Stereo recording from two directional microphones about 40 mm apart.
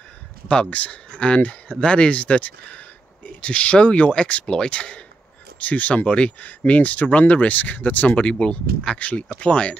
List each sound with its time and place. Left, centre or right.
0.7 s speech: left
5.6 s speech: left
8.2 s speech: left